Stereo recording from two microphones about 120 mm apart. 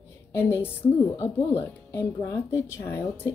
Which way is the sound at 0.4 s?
20° left (ahead or behind).